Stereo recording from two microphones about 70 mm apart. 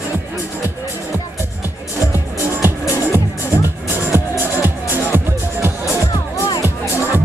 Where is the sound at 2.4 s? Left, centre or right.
Right.